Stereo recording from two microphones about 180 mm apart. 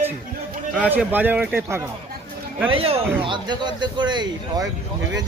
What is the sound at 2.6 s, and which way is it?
Speech, 30° right (ahead or behind).